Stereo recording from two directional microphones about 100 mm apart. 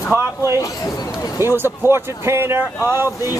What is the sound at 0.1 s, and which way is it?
Speech, 30° right (ahead or behind).